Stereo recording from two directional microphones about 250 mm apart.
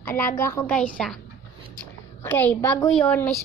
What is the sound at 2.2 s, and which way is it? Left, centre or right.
A woman's voice, centre.